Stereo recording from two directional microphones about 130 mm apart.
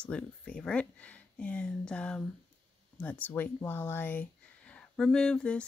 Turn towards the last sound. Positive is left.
turn(degrees=5)  # may be behind; listen again after turning